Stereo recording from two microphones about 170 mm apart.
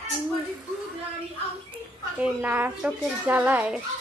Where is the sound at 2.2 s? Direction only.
10° right (ahead or behind).